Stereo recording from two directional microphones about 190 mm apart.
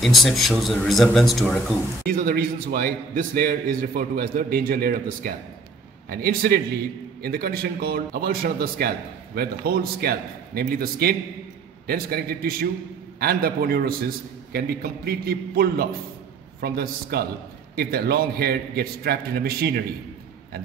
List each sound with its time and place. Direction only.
0.0 s speech: centre (ahead or behind)
2.0 s a man's voice: 50° right (ahead or behind)